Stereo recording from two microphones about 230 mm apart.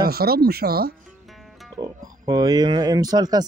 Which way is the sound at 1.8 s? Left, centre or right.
Centre.